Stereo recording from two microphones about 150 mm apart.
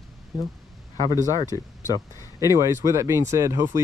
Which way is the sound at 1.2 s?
25° left (ahead or behind).